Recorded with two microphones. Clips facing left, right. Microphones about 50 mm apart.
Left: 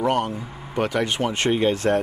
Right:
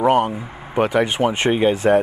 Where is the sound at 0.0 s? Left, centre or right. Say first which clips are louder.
Right 6 dB; centre.